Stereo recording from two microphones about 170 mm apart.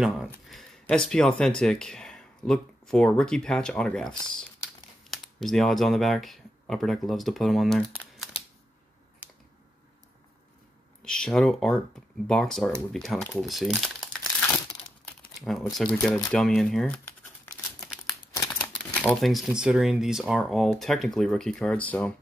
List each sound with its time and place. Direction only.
0.0 s speech: centre (ahead or behind)
11.0 s speech: 5° left (ahead or behind)
15.0 s crumpling: centre (ahead or behind)
18.3 s speech: 15° left (ahead or behind)